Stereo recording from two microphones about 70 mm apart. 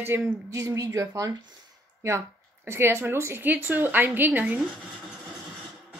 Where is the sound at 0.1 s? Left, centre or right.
Right.